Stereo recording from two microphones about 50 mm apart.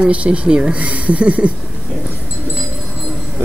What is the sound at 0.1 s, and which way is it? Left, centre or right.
Speech, right.